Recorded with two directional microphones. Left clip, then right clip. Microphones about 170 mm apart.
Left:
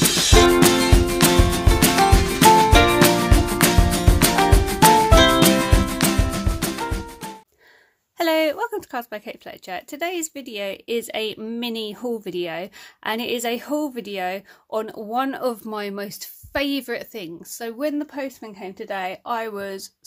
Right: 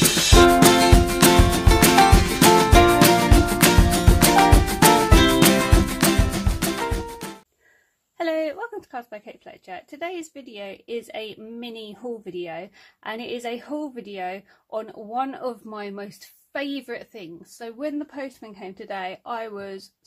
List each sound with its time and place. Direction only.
0.5 s music: centre (ahead or behind)
8.2 s speech: 30° left (ahead or behind)